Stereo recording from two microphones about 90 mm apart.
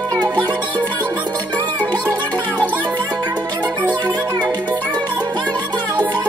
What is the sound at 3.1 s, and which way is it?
Music, 50° right (ahead or behind).